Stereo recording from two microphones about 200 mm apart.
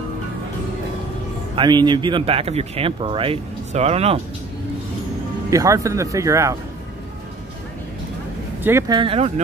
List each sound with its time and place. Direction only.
1.5 s speech: 20° right (ahead or behind)
5.5 s speech: 15° right (ahead or behind)
8.6 s speech: 15° right (ahead or behind)